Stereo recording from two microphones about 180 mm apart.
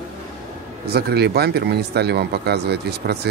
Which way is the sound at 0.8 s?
65° right (ahead or behind).